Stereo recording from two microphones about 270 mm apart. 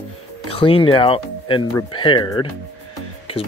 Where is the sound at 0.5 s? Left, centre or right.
Centre.